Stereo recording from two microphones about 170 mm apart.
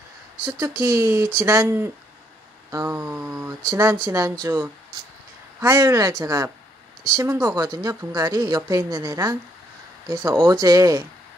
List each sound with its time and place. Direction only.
0.5 s speech: 15° right (ahead or behind)
2.7 s a sound: 15° right (ahead or behind)
3.7 s speech: 15° right (ahead or behind)